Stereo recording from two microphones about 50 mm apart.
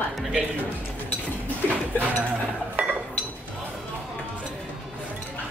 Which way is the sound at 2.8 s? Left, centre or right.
Right.